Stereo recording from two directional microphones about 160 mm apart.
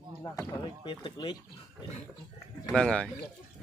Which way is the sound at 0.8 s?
30° left (ahead or behind).